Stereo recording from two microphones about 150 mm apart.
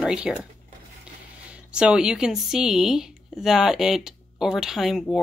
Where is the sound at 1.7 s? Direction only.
5° right (ahead or behind).